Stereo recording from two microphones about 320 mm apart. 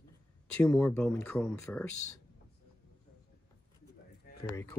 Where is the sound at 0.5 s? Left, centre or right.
Centre.